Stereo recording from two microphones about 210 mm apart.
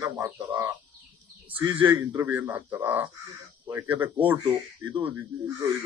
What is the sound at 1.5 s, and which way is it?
Speech, 20° right (ahead or behind).